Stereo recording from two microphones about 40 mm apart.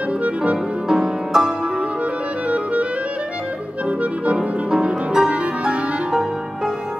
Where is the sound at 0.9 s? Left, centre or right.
Centre.